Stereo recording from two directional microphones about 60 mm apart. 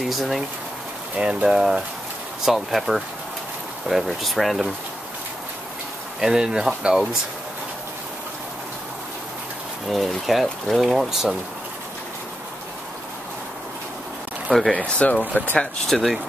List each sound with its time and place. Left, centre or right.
0.0 s speech: centre
1.1 s speech: centre
6.2 s speech: centre
9.8 s speech: centre
14.7 s speech: left
15.9 s speech: centre